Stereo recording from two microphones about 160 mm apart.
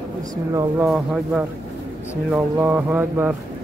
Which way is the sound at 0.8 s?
5° right (ahead or behind).